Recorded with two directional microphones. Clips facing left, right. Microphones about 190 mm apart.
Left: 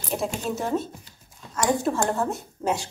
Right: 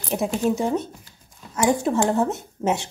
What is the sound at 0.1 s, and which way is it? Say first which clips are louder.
A woman's voice: right 6 dB; 15° right (ahead or behind).